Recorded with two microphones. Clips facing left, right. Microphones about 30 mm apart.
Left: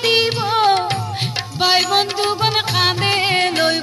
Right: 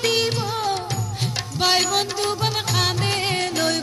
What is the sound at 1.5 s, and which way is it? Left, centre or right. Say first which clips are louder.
Music: left 4 dB; left.